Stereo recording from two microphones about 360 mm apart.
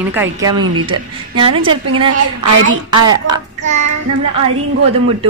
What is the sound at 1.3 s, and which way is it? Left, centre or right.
Speech, centre.